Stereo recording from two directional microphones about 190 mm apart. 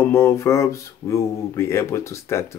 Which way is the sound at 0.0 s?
15° left (ahead or behind).